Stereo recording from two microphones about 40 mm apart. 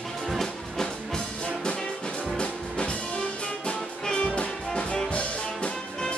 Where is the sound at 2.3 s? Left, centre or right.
Left.